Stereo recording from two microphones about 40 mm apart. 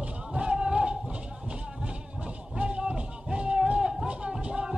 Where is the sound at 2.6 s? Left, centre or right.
Right.